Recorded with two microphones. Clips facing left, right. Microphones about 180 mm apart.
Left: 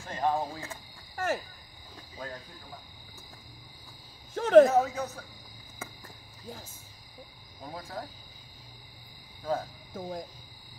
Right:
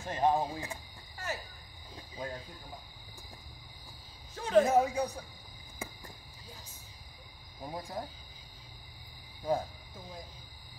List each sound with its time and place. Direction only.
0.0 s speech: 20° right (ahead or behind)
1.1 s speech: 50° left (ahead or behind)
2.1 s speech: 15° right (ahead or behind)
4.3 s speech: 65° left (ahead or behind)
4.6 s a man's voice: 15° right (ahead or behind)
6.4 s speech: 50° left (ahead or behind)
7.6 s a man's voice: 15° right (ahead or behind)
9.9 s speech: 50° left (ahead or behind)